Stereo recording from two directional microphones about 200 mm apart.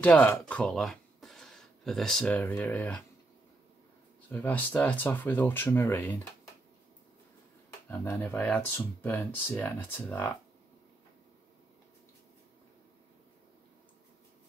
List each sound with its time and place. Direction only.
0.0 s speech: 5° left (ahead or behind)
4.3 s speech: 10° left (ahead or behind)
7.9 s speech: 15° left (ahead or behind)